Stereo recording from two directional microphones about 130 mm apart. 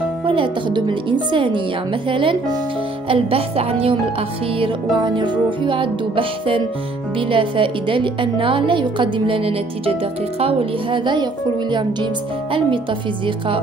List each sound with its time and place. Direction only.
0.2 s a woman's voice: 40° right (ahead or behind)